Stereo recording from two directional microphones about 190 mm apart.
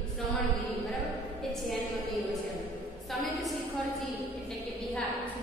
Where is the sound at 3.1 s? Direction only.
Centre (ahead or behind).